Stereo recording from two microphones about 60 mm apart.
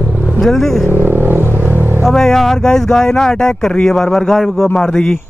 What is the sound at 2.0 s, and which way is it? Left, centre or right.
Speech, centre.